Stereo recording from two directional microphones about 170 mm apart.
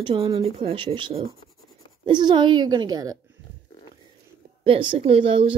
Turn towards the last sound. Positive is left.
turn(degrees=-30)  # may be behind; listen again after turning